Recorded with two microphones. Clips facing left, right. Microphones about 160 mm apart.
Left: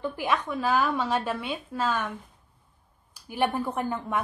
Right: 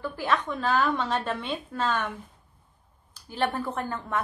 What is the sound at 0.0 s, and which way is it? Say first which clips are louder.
A woman's voice: even; 15° left (ahead or behind).